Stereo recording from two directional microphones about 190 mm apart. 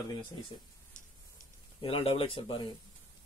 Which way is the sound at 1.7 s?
30° left (ahead or behind).